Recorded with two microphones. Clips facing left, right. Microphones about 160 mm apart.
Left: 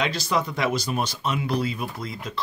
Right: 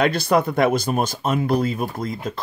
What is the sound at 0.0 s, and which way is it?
Speech, 55° right (ahead or behind).